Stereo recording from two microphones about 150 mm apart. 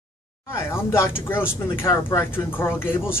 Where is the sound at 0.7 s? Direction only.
15° left (ahead or behind).